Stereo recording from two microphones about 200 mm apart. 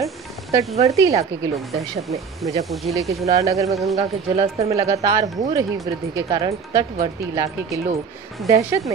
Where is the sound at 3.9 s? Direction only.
30° right (ahead or behind).